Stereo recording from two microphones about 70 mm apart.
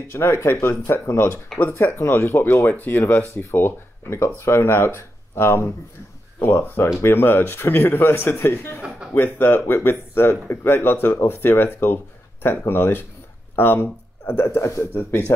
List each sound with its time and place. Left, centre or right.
0.1 s speech: left
1.9 s speech: left
15.0 s speech: left